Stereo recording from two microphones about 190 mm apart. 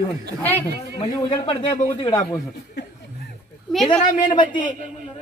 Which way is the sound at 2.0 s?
20° left (ahead or behind).